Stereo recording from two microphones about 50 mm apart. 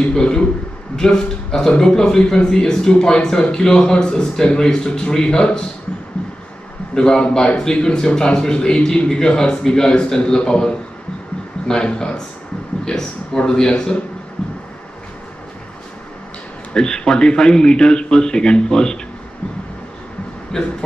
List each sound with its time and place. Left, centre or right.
0.1 s a man's voice: centre
6.2 s music: centre
7.0 s a man's voice: centre
16.7 s a man's voice: centre
20.5 s a man's voice: centre